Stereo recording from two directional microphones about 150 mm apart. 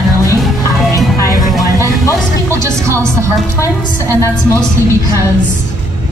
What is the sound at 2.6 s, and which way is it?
Music, 20° right (ahead or behind).